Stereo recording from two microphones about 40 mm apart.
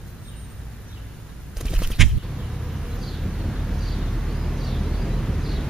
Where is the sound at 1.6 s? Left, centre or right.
Centre.